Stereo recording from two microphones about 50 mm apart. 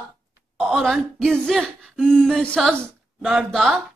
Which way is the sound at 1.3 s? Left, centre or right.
Centre.